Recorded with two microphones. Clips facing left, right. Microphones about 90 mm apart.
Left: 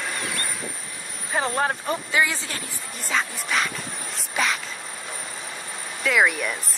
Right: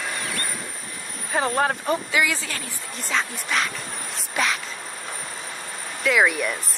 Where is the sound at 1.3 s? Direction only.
40° right (ahead or behind).